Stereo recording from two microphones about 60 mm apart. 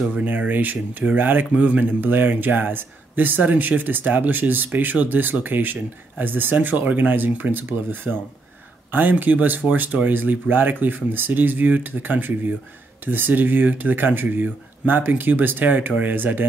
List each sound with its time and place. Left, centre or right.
0.1 s speech: right